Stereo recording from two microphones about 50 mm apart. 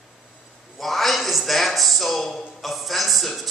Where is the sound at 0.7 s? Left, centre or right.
Centre.